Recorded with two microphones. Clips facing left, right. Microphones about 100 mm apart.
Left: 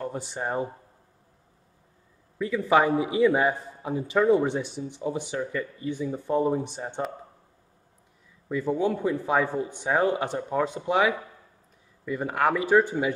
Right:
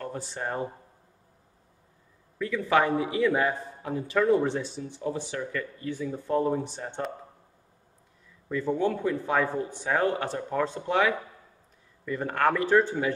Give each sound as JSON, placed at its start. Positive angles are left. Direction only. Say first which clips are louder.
{"t": 0.0, "sound": "a man's voice", "louder": "left 2 dB", "side_deg": 15}
{"t": 2.3, "sound": "a man's voice", "louder": "left 2 dB", "side_deg": 20}
{"t": 8.5, "sound": "a man's voice", "louder": "left 1 dB", "side_deg": 10}